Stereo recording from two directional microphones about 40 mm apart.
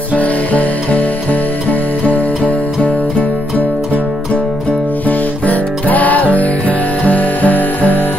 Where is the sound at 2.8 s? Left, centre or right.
Left.